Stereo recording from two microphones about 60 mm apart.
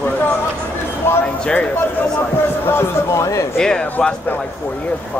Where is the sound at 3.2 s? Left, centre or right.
Left.